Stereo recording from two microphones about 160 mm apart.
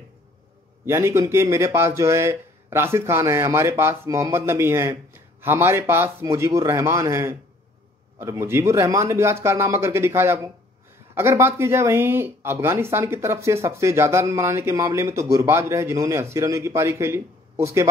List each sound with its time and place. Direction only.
0.8 s speech: 15° right (ahead or behind)